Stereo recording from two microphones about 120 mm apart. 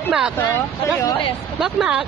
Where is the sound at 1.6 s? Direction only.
5° right (ahead or behind).